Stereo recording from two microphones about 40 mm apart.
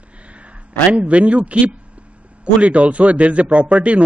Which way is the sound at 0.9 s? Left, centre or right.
Right.